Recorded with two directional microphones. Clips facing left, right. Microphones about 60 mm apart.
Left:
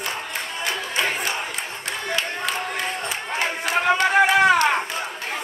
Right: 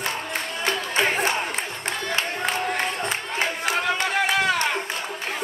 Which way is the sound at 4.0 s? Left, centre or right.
Left.